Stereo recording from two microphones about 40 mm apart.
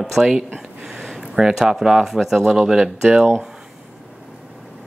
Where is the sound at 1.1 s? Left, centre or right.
Centre.